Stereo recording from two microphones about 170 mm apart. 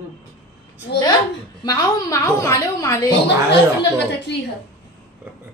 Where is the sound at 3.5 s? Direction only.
90° left.